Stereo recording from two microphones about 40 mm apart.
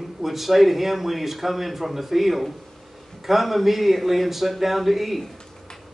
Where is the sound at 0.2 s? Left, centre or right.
Centre.